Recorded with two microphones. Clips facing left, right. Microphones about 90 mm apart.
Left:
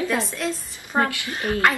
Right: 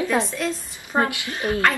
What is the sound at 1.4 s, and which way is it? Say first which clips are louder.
Speech: right 1 dB; 25° right (ahead or behind).